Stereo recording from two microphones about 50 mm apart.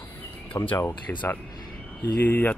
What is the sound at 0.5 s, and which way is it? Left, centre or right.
Speech, left.